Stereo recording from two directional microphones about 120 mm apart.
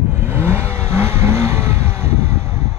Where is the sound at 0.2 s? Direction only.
20° right (ahead or behind).